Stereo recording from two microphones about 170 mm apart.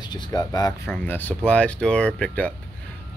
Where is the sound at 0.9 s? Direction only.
10° left (ahead or behind).